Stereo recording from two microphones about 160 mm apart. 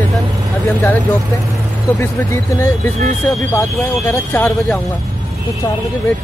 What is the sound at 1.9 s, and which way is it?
Speech, 20° left (ahead or behind).